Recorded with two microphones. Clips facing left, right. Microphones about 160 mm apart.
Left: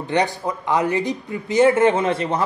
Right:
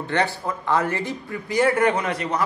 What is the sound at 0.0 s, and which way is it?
A man's voice, 15° left (ahead or behind).